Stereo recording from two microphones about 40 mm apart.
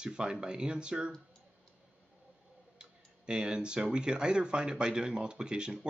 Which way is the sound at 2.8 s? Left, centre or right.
Right.